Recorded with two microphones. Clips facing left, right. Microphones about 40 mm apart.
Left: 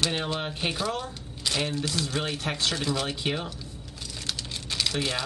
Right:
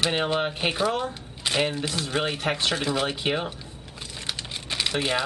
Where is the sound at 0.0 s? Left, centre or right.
Right.